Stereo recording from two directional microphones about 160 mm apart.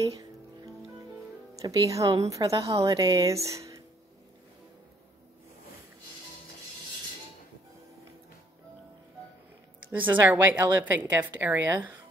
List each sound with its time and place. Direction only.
0.0 s speech: 20° right (ahead or behind)
1.5 s speech: 20° right (ahead or behind)
3.4 s a sound: 20° right (ahead or behind)
9.8 s a woman's voice: 10° right (ahead or behind)